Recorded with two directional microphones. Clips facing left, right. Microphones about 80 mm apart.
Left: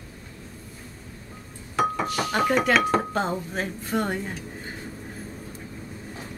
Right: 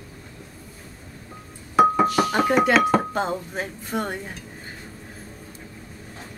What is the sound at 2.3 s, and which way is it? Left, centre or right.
Speech, centre.